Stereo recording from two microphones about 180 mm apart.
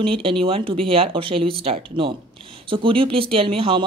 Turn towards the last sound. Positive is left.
turn(degrees=-30)  # may be behind; listen again after turning